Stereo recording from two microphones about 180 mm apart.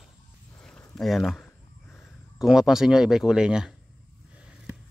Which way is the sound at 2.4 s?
5° right (ahead or behind).